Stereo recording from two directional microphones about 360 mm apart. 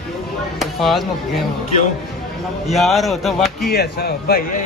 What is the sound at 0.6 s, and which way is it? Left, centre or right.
Speech, centre.